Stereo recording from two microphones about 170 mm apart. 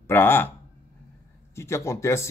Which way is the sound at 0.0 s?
10° left (ahead or behind).